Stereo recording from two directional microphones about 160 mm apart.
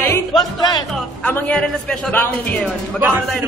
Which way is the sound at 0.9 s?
10° left (ahead or behind).